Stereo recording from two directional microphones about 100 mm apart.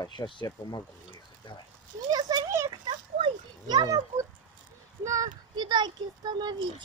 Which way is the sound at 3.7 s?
45° right (ahead or behind).